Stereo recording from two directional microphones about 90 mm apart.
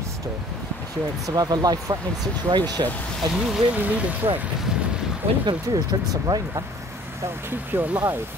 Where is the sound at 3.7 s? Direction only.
15° right (ahead or behind).